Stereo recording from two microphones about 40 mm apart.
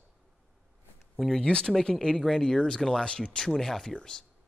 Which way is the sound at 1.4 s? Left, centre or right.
Left.